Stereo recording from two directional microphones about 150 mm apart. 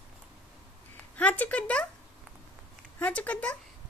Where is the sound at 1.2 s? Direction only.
10° left (ahead or behind).